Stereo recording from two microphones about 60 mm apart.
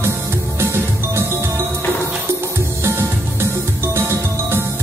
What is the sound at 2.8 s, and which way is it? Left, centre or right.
Music, right.